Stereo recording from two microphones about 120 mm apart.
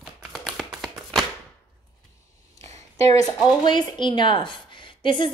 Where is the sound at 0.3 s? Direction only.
Centre (ahead or behind).